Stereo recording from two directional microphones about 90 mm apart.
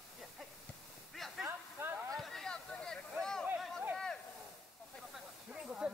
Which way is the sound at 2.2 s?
5° left (ahead or behind).